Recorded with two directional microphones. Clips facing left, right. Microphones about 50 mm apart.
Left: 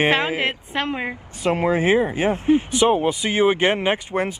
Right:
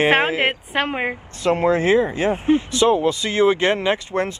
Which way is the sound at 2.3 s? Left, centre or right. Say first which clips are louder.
Even; right.